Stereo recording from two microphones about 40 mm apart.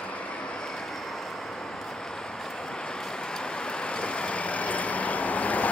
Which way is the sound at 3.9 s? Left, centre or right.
Left.